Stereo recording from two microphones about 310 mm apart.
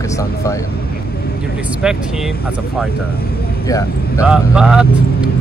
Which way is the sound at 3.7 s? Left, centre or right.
Centre.